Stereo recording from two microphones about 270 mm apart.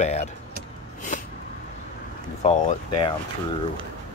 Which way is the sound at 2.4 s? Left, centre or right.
Left.